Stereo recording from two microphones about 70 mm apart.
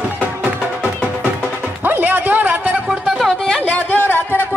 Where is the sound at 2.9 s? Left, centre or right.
Centre.